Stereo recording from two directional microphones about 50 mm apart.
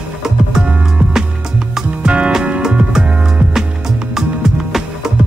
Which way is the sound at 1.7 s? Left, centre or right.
Right.